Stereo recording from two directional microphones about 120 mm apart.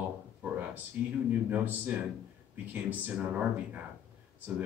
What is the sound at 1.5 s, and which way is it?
Speech, 15° right (ahead or behind).